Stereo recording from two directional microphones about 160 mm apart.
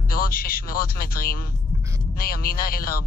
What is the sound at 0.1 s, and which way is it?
A man's voice, 65° left (ahead or behind).